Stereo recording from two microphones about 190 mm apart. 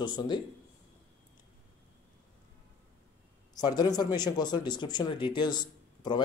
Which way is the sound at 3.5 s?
20° left (ahead or behind).